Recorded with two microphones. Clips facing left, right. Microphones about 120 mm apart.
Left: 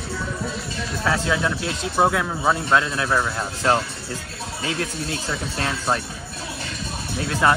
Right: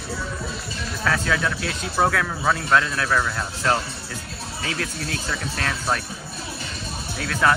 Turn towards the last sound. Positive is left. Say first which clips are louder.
# left 1 dB
turn(degrees=20)  # may be behind; listen again after turning